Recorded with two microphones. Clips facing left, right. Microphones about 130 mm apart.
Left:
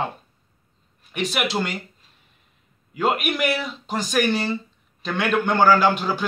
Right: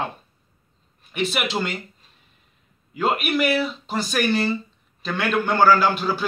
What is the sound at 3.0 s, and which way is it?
A man's voice, 15° left (ahead or behind).